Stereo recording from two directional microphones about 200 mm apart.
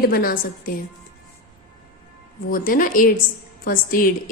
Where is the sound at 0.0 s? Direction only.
45° left (ahead or behind).